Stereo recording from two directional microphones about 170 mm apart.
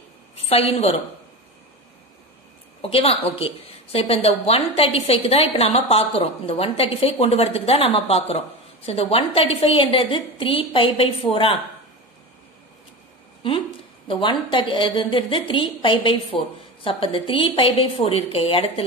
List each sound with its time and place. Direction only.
0.5 s a woman's voice: 35° left (ahead or behind)
2.8 s a woman's voice: 35° left (ahead or behind)
14.0 s a woman's voice: 30° left (ahead or behind)